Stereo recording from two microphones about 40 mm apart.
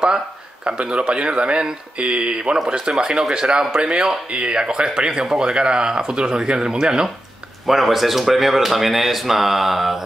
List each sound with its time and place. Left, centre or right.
0.7 s speech: right
7.6 s speech: centre